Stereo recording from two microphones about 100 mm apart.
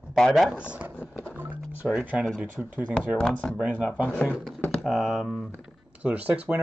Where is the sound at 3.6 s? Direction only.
10° right (ahead or behind).